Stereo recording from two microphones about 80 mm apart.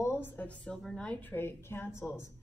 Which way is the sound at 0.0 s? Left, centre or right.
Left.